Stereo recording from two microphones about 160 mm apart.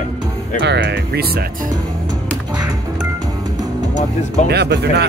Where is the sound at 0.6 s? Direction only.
90° right.